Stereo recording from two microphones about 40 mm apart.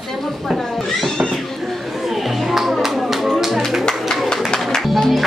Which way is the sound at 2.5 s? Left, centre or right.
Centre.